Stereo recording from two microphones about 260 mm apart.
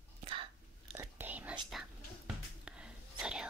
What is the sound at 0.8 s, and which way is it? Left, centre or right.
Whispering, centre.